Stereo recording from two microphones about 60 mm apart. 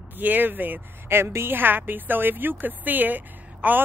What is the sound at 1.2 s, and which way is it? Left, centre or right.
A woman's voice, right.